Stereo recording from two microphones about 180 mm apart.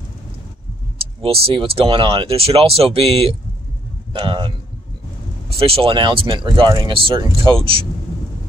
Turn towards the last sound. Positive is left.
turn(degrees=-30)  # may be behind; listen again after turning